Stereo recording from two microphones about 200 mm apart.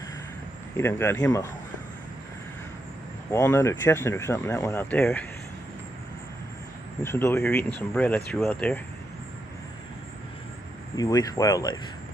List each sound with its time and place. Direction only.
0.7 s speech: 10° left (ahead or behind)
3.3 s speech: 15° left (ahead or behind)
7.0 s speech: 10° left (ahead or behind)
11.0 s speech: 20° left (ahead or behind)